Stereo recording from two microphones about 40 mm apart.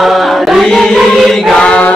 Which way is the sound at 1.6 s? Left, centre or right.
Left.